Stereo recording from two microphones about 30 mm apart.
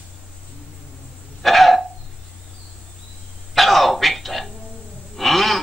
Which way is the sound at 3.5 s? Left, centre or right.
Centre.